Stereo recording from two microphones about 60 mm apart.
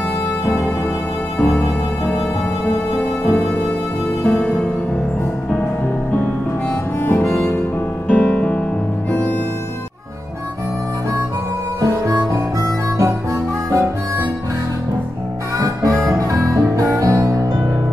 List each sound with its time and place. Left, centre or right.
0.5 s music: left
1.4 s music: left
7.0 s music: left
8.1 s music: centre
11.8 s harmonica: right
15.5 s music: right